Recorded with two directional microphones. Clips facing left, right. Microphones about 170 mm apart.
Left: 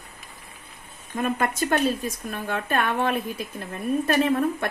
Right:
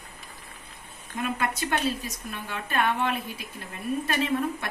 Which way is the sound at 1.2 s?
45° left (ahead or behind).